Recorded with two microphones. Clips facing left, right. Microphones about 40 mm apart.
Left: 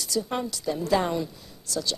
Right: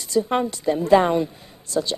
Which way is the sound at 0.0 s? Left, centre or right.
Right.